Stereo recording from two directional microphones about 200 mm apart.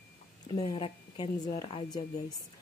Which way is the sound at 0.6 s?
25° left (ahead or behind).